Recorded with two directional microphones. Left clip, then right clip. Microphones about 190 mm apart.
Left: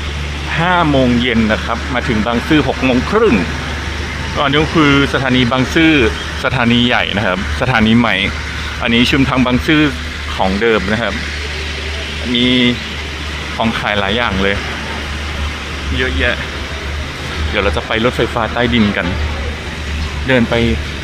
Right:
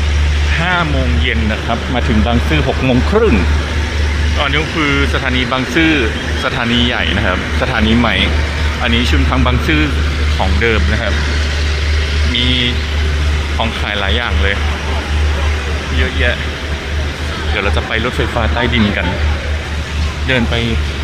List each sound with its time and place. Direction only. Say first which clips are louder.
0.6 s speech: left 4 dB; 5° left (ahead or behind)
2.0 s speech: left 2 dB; 5° right (ahead or behind)
4.4 s a man's voice: left 3 dB; centre (ahead or behind)
7.7 s speech: left 2 dB; 25° left (ahead or behind)
8.8 s speech: left 4 dB; 10° left (ahead or behind)
12.4 s speech: left 2 dB; 5° right (ahead or behind)
16.0 s speech: left 1 dB; centre (ahead or behind)
17.6 s speech: left 2 dB; centre (ahead or behind)
20.2 s speech: left 2 dB; 5° right (ahead or behind)